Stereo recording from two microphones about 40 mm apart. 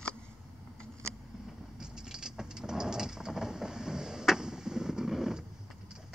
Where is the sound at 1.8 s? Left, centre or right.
Centre.